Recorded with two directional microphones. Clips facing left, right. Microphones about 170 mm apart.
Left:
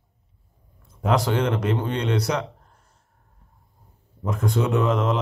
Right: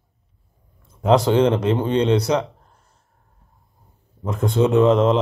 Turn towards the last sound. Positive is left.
turn(degrees=-25)  # may be behind; listen again after turning